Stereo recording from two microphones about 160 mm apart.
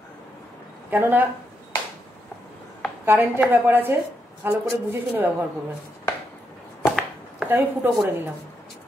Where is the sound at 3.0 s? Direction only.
10° right (ahead or behind).